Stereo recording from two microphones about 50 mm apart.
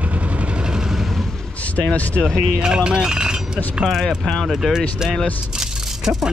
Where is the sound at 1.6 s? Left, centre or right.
Left.